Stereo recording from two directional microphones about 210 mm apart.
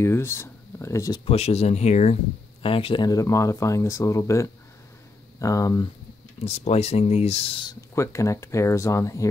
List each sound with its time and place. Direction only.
0.0 s speech: 10° left (ahead or behind)
1.2 s speech: 30° left (ahead or behind)
6.4 s speech: 30° left (ahead or behind)
7.9 s speech: 15° left (ahead or behind)